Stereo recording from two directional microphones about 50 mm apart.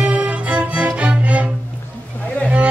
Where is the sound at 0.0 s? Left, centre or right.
Right.